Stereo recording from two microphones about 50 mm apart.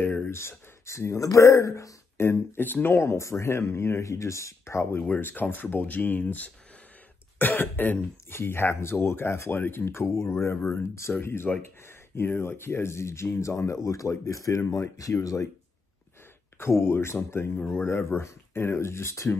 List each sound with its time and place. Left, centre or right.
0.0 s speech: left
2.1 s speech: left
4.9 s speech: left
7.3 s speech: left
8.4 s speech: left
10.0 s speech: left
11.5 s speech: centre
12.2 s speech: left
16.5 s speech: left